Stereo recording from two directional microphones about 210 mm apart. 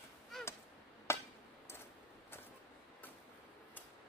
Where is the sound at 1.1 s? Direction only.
10° left (ahead or behind).